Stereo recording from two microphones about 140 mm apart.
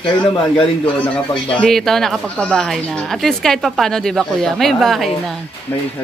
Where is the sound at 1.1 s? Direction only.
5° left (ahead or behind).